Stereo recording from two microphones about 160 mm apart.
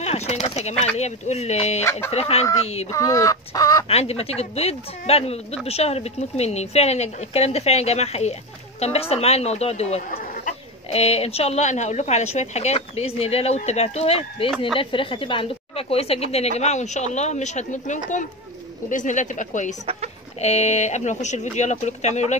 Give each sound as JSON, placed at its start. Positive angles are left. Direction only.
{"t": 0.0, "sound": "a woman's voice", "side_deg": 40}
{"t": 2.9, "sound": "speech", "side_deg": 20}
{"t": 3.9, "sound": "a woman's voice", "side_deg": 40}
{"t": 10.1, "sound": "chatter", "side_deg": 60}
{"t": 10.9, "sound": "a woman's voice", "side_deg": 40}